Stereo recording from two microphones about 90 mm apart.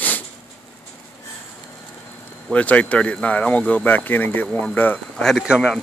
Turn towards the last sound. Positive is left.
turn(degrees=-10)  # may be behind; listen again after turning